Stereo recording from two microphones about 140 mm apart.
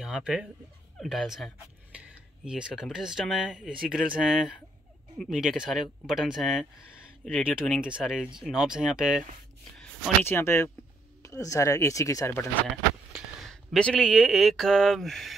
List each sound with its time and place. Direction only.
0.0 s speech: 5° right (ahead or behind)
10.2 s speech: 15° left (ahead or behind)
13.4 s speech: centre (ahead or behind)